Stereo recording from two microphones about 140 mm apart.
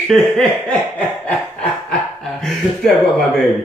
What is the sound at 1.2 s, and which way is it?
Chuckle, 10° left (ahead or behind).